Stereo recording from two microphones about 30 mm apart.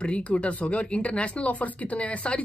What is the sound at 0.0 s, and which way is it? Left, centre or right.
Speech, left.